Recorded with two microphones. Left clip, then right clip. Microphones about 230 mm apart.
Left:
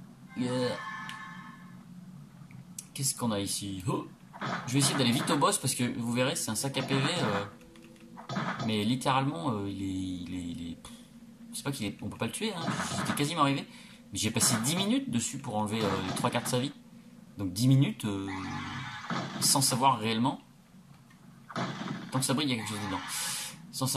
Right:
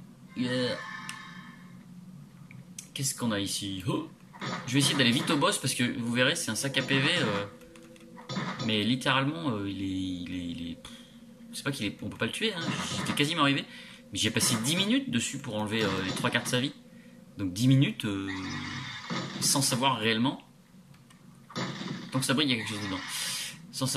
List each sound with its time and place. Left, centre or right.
0.4 s speech: centre
2.7 s speech: centre
8.3 s a sound: centre
8.6 s speech: centre
12.6 s speech: centre
13.2 s speech: centre
14.4 s speech: right
14.7 s speech: centre
18.4 s music: centre
19.4 s speech: centre
21.5 s a sound: centre
22.2 s speech: centre
23.1 s a sound: centre